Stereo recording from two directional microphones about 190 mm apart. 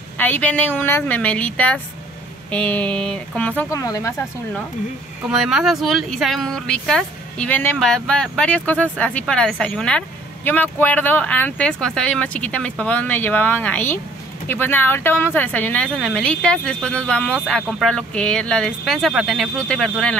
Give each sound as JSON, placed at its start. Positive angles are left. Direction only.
{"t": 0.2, "sound": "a woman's voice", "side_deg": 10}
{"t": 3.7, "sound": "a woman's voice", "side_deg": 15}
{"t": 5.3, "sound": "a woman's voice", "side_deg": 0}